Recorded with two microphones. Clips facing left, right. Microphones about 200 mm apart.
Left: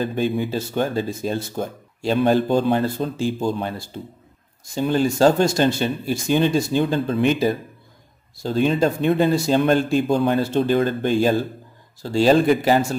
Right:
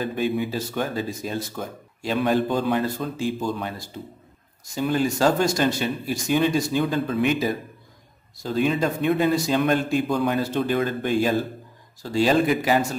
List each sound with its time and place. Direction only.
0.0 s speech: 30° left (ahead or behind)